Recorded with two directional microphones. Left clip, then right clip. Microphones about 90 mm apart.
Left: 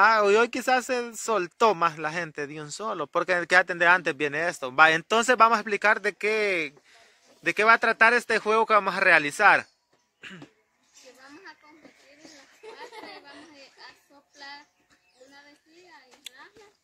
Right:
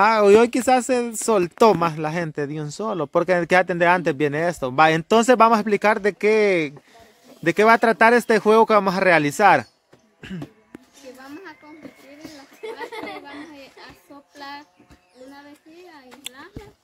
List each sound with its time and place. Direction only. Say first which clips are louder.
0.0 s speech: right 5 dB; 10° right (ahead or behind); by 9.7 s 25° right (ahead or behind)